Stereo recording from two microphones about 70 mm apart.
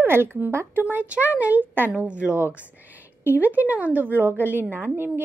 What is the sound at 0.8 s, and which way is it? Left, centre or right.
A woman's voice, right.